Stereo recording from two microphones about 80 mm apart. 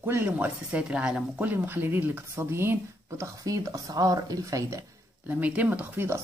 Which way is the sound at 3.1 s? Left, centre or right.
Right.